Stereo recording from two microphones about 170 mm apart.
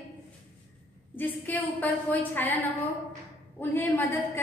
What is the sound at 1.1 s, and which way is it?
A woman's voice, 10° left (ahead or behind).